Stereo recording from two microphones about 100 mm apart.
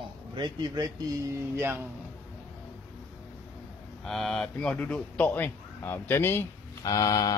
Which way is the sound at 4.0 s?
5° left (ahead or behind).